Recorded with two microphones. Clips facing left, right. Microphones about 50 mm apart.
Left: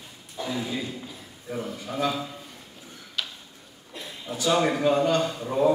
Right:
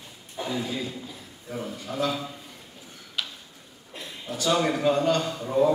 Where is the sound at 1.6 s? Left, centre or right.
Centre.